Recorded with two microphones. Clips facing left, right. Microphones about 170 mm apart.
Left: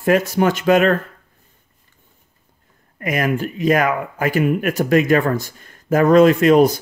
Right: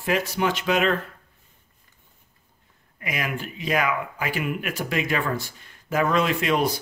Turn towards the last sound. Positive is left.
turn(degrees=45)  # may be behind; listen again after turning